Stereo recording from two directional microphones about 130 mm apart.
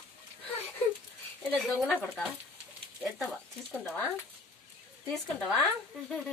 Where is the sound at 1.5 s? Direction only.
Centre (ahead or behind).